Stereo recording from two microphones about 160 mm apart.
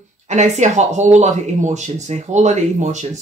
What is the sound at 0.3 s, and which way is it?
Speech, 45° right (ahead or behind).